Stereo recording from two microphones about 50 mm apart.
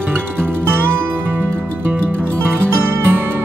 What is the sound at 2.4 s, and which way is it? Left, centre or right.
Music, right.